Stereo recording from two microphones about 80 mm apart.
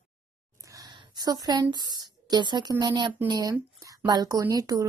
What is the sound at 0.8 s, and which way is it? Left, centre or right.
Speech, right.